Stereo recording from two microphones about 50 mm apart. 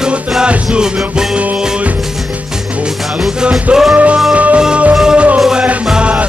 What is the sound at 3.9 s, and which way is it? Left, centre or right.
Music, right.